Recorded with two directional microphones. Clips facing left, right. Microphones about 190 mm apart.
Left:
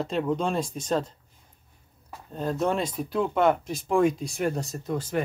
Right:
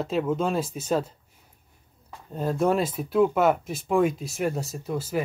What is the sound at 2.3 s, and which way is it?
Speech, 5° right (ahead or behind).